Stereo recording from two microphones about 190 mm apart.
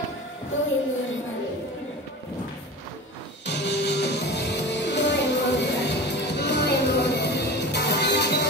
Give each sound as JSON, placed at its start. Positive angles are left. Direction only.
{"t": 3.4, "sound": "music", "side_deg": 65}